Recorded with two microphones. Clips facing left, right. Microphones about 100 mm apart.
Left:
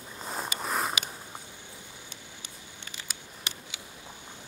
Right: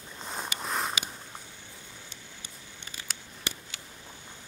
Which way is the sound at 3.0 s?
15° left (ahead or behind).